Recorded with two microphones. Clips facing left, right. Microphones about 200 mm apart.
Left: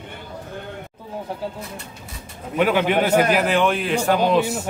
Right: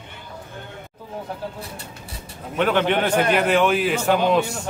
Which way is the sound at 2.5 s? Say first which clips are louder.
Left 1 dB; 5° left (ahead or behind).